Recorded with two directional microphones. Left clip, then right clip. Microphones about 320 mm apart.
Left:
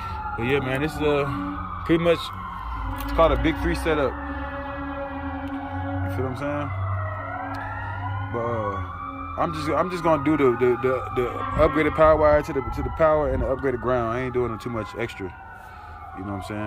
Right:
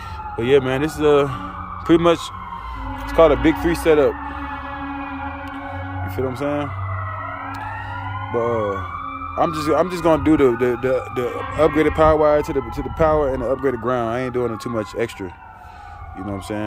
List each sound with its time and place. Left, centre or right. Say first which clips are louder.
0.4 s speech: right 8 dB; centre
3.2 s speech: right 6 dB; centre
6.1 s speech: right 8 dB; centre
8.4 s speech: right 6 dB; centre